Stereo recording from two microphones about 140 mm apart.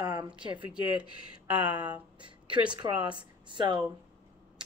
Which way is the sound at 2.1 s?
35° right (ahead or behind).